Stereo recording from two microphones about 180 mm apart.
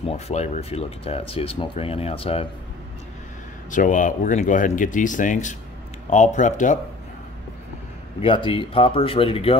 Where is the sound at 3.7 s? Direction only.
45° left (ahead or behind).